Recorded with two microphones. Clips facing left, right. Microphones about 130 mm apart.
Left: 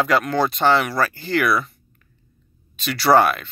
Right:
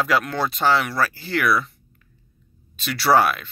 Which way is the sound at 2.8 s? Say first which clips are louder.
Left 2 dB; centre (ahead or behind).